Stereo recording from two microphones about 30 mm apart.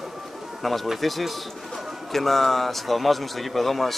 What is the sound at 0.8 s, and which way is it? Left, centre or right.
Speech, centre.